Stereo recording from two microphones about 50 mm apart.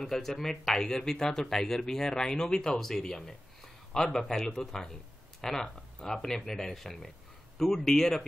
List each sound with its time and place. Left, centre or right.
0.0 s speech: centre